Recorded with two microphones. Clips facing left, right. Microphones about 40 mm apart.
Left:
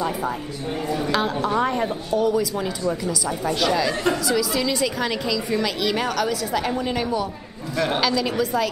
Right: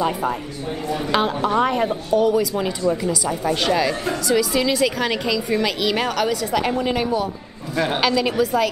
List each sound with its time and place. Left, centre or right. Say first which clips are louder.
1.1 s a woman's voice: right 4 dB; right
4.4 s a woman's voice: right 3 dB; right
8.4 s a woman's voice: right 3 dB; centre